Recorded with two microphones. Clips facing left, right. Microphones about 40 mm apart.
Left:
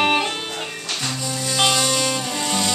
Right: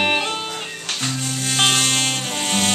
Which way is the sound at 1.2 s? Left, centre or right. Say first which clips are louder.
Even; right.